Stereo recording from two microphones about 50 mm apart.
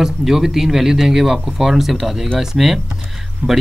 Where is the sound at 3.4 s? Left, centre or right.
Right.